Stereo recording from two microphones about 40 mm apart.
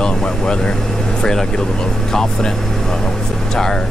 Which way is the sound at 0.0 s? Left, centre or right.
Centre.